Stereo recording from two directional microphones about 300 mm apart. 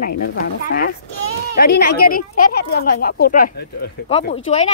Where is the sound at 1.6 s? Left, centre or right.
Left.